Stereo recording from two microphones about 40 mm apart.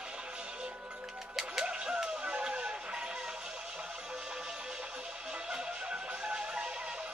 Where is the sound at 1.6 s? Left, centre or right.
Right.